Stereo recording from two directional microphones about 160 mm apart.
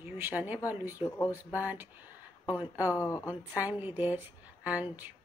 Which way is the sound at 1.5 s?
10° right (ahead or behind).